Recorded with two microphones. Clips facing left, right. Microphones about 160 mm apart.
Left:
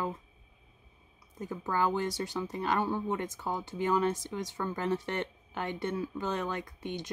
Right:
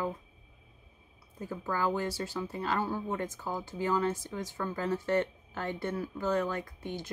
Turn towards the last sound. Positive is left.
turn(degrees=20)  # may be behind; listen again after turning